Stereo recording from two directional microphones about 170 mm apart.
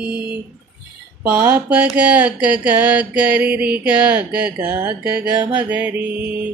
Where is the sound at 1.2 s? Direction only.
10° right (ahead or behind).